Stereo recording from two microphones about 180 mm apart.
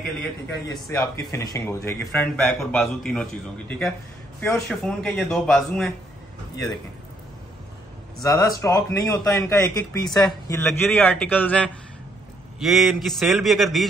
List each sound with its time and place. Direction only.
0.9 s speech: 20° left (ahead or behind)
2.6 s a man's voice: 5° left (ahead or behind)
8.2 s a man's voice: 20° left (ahead or behind); by 13.8 s centre (ahead or behind)